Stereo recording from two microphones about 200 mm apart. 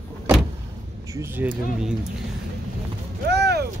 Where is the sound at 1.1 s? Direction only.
10° right (ahead or behind).